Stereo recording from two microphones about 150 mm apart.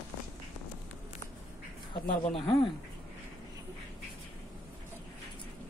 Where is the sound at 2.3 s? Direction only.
35° left (ahead or behind).